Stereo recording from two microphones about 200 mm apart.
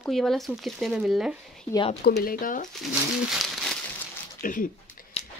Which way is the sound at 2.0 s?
50° left (ahead or behind).